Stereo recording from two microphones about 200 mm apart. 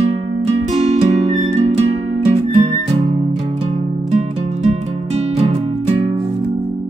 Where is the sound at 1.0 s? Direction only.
35° right (ahead or behind).